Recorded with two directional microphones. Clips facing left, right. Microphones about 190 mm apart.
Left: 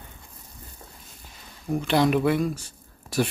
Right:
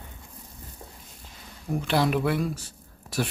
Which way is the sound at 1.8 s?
Centre (ahead or behind).